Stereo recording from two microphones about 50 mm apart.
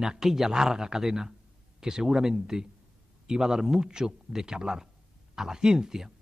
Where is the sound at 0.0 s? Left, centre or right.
Centre.